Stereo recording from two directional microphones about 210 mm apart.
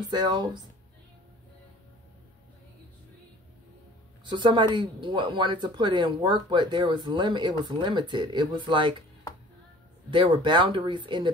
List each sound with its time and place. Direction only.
0.1 s speech: 20° right (ahead or behind)
4.2 s speech: 20° right (ahead or behind)
10.1 s speech: 20° right (ahead or behind)